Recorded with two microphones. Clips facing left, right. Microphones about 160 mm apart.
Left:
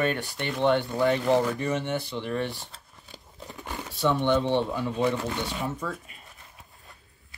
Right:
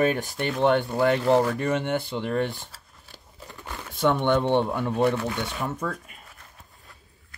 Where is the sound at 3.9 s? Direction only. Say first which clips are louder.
Right 2 dB; 55° right (ahead or behind).